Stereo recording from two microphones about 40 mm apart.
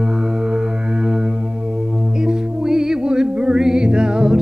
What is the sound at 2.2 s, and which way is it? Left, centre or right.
Music, centre.